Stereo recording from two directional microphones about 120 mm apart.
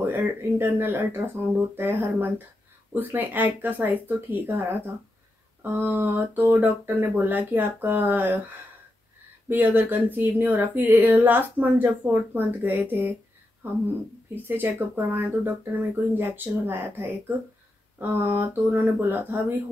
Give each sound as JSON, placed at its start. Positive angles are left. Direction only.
{"t": 0.0, "sound": "speech", "side_deg": -20}
{"t": 9.5, "sound": "speech", "side_deg": -15}